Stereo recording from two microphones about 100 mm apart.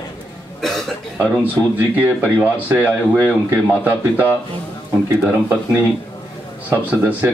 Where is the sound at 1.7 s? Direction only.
15° right (ahead or behind).